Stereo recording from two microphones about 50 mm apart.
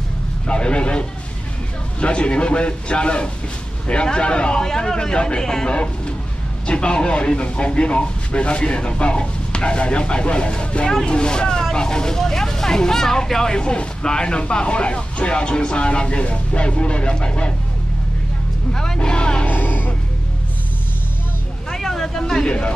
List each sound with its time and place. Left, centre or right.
0.5 s speech: left
18.7 s music: centre
19.4 s music: left
21.6 s vehicle: centre